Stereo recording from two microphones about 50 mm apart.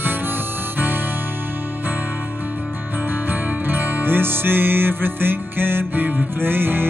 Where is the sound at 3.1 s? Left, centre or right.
Right.